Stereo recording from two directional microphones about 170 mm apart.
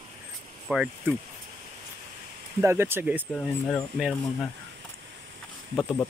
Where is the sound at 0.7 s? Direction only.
5° right (ahead or behind).